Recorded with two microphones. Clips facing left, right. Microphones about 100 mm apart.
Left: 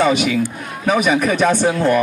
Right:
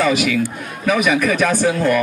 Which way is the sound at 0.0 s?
30° left (ahead or behind).